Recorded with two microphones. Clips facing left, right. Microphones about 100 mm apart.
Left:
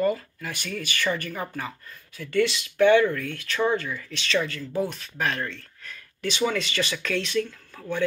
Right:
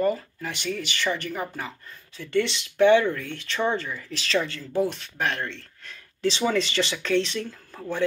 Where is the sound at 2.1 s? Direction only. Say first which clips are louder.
Left 1 dB; 25° right (ahead or behind).